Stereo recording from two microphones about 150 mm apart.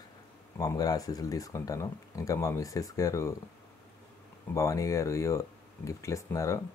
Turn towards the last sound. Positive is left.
turn(degrees=20)  # may be behind; listen again after turning